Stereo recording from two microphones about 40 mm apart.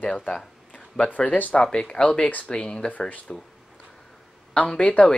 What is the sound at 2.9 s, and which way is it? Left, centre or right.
Speech, left.